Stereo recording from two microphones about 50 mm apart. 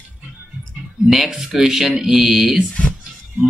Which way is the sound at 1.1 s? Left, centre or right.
Centre.